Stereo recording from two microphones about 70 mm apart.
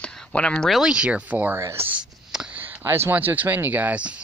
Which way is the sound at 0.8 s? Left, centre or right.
Centre.